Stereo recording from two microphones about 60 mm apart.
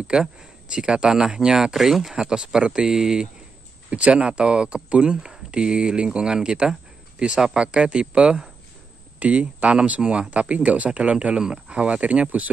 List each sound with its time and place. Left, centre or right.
0.0 s speech: centre
3.9 s speech: centre